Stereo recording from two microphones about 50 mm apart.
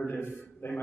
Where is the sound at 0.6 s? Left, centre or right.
Left.